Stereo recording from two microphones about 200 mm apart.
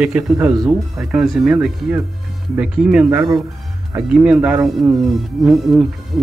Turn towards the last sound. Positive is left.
turn(degrees=0)  # may be behind; listen again after turning